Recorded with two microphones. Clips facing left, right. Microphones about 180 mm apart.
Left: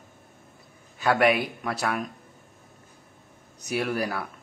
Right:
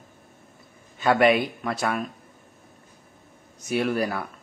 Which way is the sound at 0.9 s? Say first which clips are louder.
Right 3 dB; centre (ahead or behind).